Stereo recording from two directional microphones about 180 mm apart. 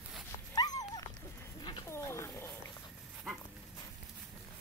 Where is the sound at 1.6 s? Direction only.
25° left (ahead or behind).